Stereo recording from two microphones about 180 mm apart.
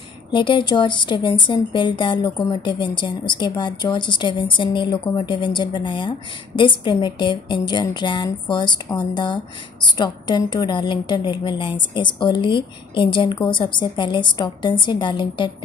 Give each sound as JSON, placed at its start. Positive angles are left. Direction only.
{"t": 0.3, "sound": "a woman's voice", "side_deg": 25}